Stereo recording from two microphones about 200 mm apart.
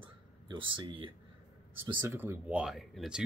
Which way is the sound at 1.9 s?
10° right (ahead or behind).